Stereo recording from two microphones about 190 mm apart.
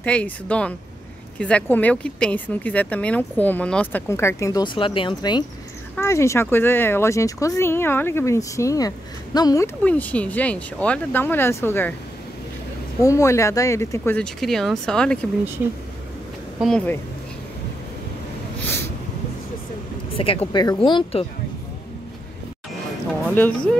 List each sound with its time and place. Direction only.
0.0 s speech: 5° left (ahead or behind)
9.8 s speech: 10° left (ahead or behind)
13.0 s speech: 15° left (ahead or behind)
16.5 s speech: 5° left (ahead or behind)
20.2 s speech: 30° left (ahead or behind)
23.3 s speech: 10° left (ahead or behind)